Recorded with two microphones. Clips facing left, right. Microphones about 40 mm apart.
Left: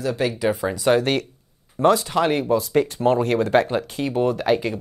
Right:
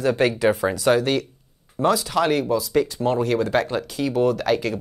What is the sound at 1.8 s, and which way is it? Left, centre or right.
Speech, centre.